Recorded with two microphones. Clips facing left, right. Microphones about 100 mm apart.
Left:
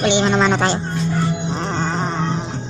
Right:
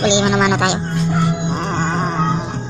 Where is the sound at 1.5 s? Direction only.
15° right (ahead or behind).